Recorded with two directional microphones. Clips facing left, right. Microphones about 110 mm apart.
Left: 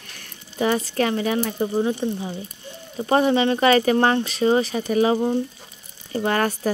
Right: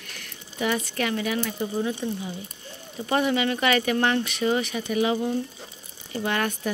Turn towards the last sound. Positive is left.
turn(degrees=40)  # may be behind; listen again after turning